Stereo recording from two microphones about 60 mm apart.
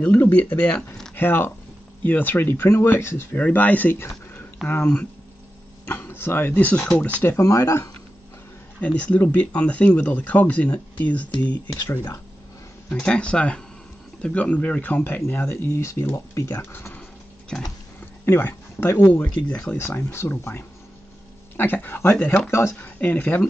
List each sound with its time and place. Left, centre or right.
0.0 s speech: left
1.1 s speech: left
2.5 s speech: left
3.3 s speech: left
3.9 s a sound: left
5.9 s speech: left
7.3 s speech: left
8.8 s speech: left
17.5 s speech: centre
18.2 s speech: left
19.2 s speech: left
19.8 s speech: left
22.5 s speech: left
22.8 s speech: left